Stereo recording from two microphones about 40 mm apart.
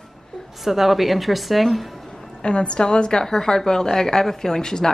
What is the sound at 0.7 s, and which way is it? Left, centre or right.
A woman's voice, centre.